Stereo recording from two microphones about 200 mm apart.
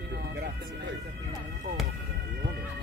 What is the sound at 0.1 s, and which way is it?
Music, 55° right (ahead or behind).